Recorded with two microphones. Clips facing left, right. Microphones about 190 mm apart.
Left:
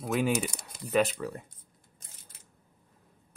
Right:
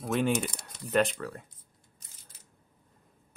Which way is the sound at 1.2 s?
15° left (ahead or behind).